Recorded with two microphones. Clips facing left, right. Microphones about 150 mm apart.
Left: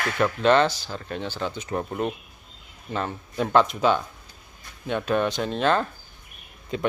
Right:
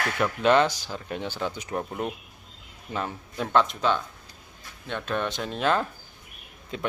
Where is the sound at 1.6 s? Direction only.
Centre (ahead or behind).